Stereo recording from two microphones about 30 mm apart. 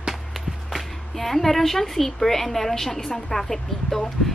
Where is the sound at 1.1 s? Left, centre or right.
Centre.